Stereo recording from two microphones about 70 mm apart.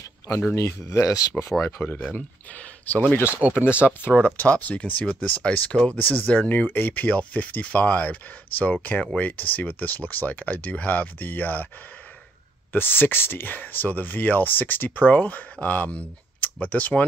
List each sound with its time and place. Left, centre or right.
0.6 s speech: left
1.8 s speech: left
3.3 s speech: centre
4.1 s speech: left
12.7 s speech: left